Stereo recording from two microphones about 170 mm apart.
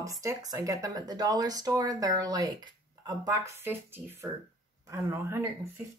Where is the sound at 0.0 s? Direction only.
20° right (ahead or behind).